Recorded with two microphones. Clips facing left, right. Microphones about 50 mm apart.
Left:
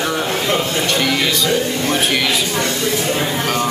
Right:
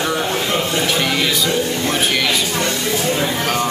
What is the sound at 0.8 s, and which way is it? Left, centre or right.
Speech, centre.